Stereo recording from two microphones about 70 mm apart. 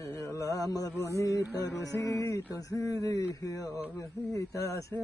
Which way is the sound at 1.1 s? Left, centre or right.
Left.